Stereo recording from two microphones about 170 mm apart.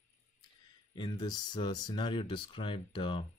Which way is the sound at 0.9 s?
25° left (ahead or behind).